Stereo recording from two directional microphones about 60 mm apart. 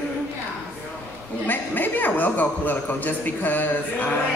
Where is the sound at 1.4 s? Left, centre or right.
Left.